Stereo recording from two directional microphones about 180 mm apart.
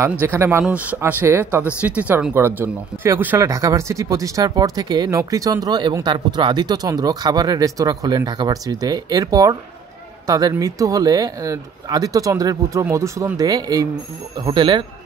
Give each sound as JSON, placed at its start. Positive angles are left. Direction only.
{"t": 0.0, "sound": "speech", "side_deg": -10}